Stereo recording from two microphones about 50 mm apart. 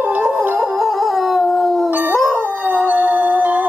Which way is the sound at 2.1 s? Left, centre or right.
Centre.